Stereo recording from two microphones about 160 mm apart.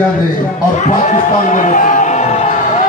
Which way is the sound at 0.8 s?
50° left (ahead or behind).